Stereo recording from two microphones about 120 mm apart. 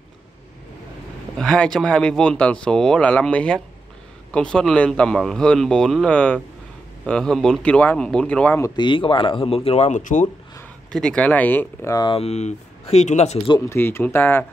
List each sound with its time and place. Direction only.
1.4 s speech: 5° left (ahead or behind)
8.7 s speech: 40° left (ahead or behind); by 10.2 s 90° left
10.9 s speech: 5° left (ahead or behind)
11.8 s speech: 30° left (ahead or behind)
12.1 s speech: 60° left (ahead or behind)
13.7 s speech: 20° left (ahead or behind)